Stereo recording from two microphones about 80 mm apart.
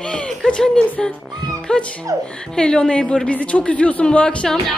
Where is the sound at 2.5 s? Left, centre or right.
Centre.